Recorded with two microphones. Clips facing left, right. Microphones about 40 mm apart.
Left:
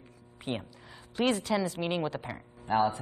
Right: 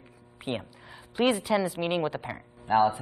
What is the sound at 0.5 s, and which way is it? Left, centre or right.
A woman's voice, centre.